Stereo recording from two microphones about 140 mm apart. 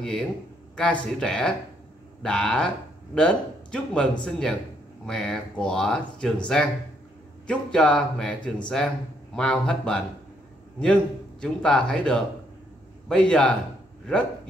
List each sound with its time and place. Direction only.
0.0 s a man's voice: 5° left (ahead or behind)
11.4 s a man's voice: 5° left (ahead or behind)